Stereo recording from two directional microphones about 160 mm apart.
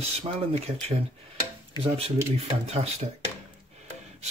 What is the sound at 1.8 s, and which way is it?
Speech, 35° right (ahead or behind).